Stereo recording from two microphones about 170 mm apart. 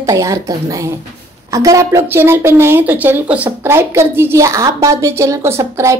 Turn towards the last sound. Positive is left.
turn(degrees=-15)  # may be behind; listen again after turning